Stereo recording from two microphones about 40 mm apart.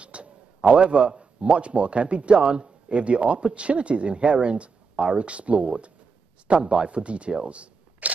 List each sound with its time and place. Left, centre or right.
0.0 s a man's voice: right